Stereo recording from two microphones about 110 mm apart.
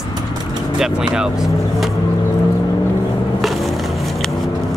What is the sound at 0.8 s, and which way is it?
Speech, 5° right (ahead or behind).